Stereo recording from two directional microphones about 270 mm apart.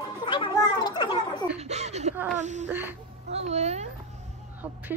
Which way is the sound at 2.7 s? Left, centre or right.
Centre.